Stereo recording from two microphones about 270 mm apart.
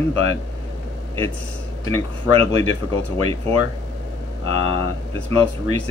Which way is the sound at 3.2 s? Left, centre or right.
Right.